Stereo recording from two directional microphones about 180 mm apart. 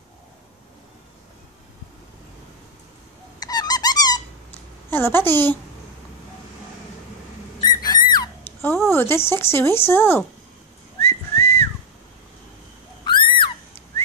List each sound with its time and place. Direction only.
3.3 s squeak: 20° left (ahead or behind)
4.8 s a woman's voice: 10° left (ahead or behind)
7.6 s a sound: 20° left (ahead or behind)
8.9 s speech: 15° left (ahead or behind)
11.0 s whistling: 10° left (ahead or behind)
13.0 s a sound: 25° left (ahead or behind)